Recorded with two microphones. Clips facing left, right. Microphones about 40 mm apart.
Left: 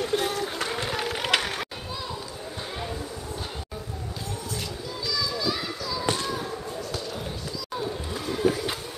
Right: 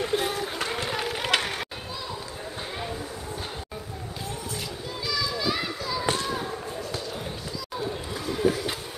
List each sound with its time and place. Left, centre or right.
0.1 s run: centre
5.0 s children playing: right
8.1 s run: centre